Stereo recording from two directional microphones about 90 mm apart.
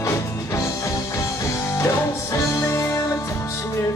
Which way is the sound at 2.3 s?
30° left (ahead or behind).